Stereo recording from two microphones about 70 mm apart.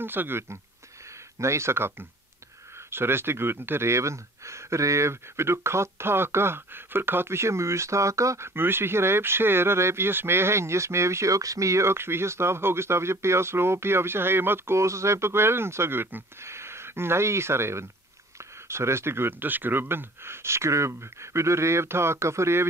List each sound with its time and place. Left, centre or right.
0.0 s speech: right
8.5 s speech: right